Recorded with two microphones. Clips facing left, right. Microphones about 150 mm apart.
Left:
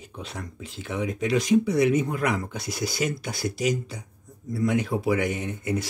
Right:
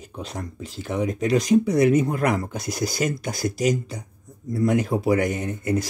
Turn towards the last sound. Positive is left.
turn(degrees=-40)  # may be behind; listen again after turning